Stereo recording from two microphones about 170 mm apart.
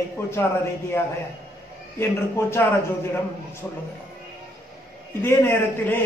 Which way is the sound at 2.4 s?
15° left (ahead or behind).